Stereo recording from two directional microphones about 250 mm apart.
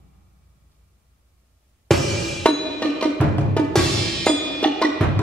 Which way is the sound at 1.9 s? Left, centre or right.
Centre.